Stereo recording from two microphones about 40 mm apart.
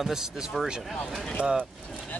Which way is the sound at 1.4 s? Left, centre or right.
Right.